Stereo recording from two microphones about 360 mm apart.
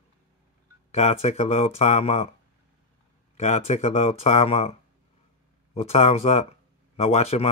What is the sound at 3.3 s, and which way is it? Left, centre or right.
Speech, centre.